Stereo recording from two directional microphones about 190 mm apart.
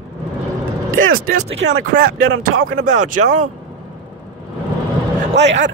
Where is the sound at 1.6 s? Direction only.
65° right (ahead or behind).